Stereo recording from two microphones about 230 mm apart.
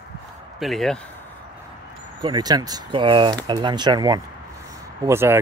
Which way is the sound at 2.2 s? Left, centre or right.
Centre.